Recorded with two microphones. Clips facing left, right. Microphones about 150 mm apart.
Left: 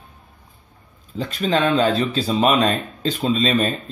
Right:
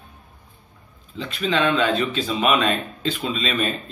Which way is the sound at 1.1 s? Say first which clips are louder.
Left 2 dB; 40° left (ahead or behind).